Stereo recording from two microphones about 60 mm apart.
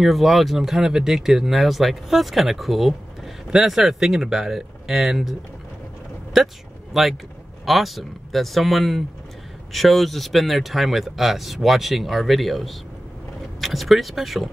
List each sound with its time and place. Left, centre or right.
0.0 s speech: centre
6.3 s speech: centre